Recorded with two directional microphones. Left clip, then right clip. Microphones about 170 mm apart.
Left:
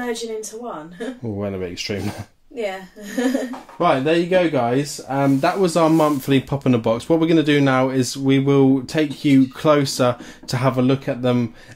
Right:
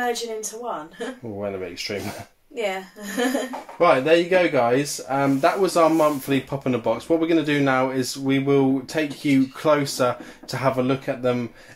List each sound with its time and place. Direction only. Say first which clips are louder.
1.4 s speech: left 2 dB; 60° left (ahead or behind)
3.2 s speech: left 2 dB; 10° right (ahead or behind)
3.7 s speech: right 1 dB; 35° left (ahead or behind)
5.0 s speech: left 3 dB; 45° left (ahead or behind)